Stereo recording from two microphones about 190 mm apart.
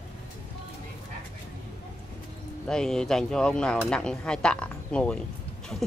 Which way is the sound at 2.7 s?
5° left (ahead or behind).